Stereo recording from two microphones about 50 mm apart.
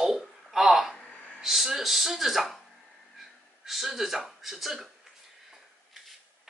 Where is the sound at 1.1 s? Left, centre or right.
Left.